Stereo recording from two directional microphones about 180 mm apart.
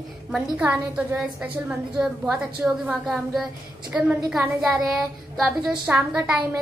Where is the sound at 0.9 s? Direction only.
5° right (ahead or behind).